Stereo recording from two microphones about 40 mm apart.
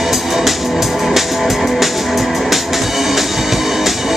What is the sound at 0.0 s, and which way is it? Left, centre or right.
Music, centre.